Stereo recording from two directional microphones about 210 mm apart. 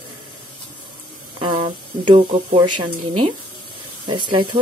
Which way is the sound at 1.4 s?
25° right (ahead or behind).